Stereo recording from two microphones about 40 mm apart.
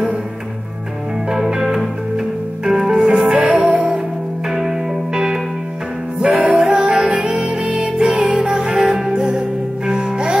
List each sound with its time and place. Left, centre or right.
1.3 s music: centre